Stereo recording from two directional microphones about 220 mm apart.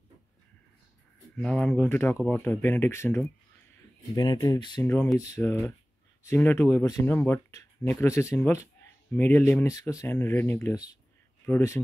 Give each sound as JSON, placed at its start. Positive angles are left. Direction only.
{"t": 1.3, "sound": "speech", "side_deg": 5}